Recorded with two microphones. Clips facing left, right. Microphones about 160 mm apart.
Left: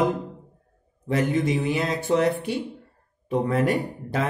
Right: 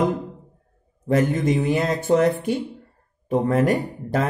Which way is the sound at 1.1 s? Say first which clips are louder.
Right 3 dB; 45° right (ahead or behind).